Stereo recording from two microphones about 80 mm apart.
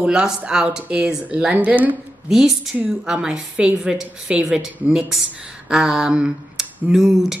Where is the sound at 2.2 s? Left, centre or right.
Centre.